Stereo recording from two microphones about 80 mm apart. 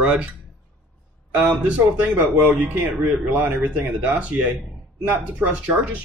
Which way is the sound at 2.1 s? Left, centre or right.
Right.